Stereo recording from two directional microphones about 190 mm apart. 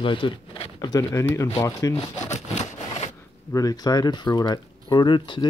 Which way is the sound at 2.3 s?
35° left (ahead or behind).